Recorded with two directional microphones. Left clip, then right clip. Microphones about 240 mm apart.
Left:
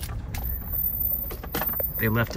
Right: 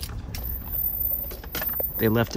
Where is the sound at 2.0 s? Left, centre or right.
Centre.